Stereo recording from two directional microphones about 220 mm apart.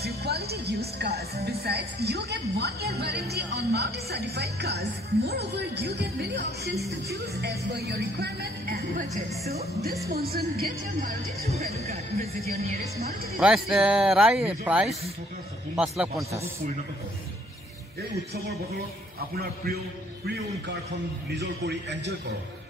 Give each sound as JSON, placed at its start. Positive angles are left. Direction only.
{"t": 0.0, "sound": "a woman's voice", "side_deg": -45}
{"t": 10.1, "sound": "a woman's voice", "side_deg": -45}
{"t": 11.4, "sound": "speech", "side_deg": -30}
{"t": 13.4, "sound": "speech", "side_deg": -5}
{"t": 19.3, "sound": "a woman's voice", "side_deg": -45}
{"t": 21.4, "sound": "a woman's voice", "side_deg": -50}